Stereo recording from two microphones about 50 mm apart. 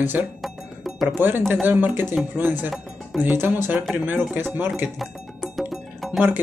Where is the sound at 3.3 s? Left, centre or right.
Right.